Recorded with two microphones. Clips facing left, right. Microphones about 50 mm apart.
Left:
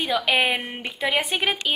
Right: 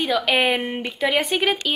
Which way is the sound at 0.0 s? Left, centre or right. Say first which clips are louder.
Right 2 dB; centre.